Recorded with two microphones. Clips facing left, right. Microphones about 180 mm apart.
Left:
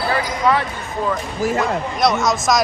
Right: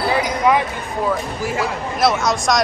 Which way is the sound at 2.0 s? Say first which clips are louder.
Right 1 dB; centre (ahead or behind).